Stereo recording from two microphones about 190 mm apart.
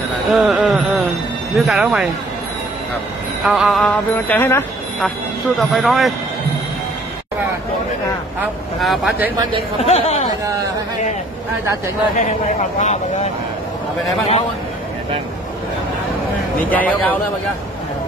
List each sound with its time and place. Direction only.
0.3 s speech: 5° right (ahead or behind)
3.4 s speech: centre (ahead or behind)
5.6 s speech: centre (ahead or behind)
8.4 s speech: centre (ahead or behind)
9.8 s speech: 35° left (ahead or behind)
12.2 s speech: 35° left (ahead or behind)
16.6 s speech: 10° left (ahead or behind)